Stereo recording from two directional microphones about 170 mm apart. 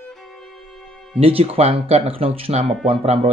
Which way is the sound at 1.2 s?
35° right (ahead or behind).